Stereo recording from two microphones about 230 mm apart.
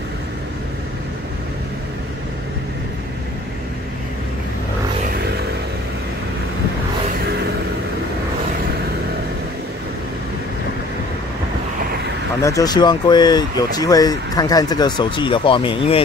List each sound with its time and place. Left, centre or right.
12.4 s speech: centre